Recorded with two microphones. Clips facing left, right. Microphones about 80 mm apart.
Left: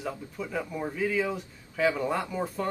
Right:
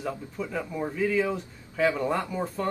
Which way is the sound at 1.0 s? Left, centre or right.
Centre.